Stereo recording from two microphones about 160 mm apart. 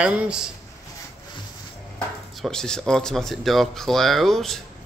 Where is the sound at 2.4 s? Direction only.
5° left (ahead or behind).